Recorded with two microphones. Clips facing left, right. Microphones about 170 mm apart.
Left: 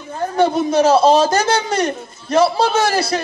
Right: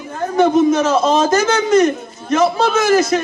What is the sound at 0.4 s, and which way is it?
A man's voice, 35° left (ahead or behind).